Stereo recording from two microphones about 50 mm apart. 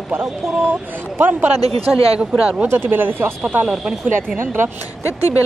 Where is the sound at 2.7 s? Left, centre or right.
Right.